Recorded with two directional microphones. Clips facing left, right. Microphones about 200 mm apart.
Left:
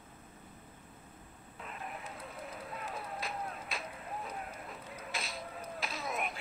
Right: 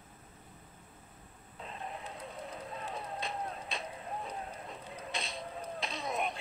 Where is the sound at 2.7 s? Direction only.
25° right (ahead or behind).